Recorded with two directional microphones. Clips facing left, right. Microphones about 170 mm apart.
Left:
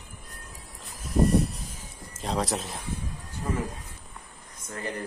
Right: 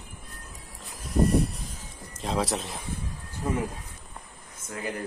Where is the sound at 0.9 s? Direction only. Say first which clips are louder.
Even; centre (ahead or behind).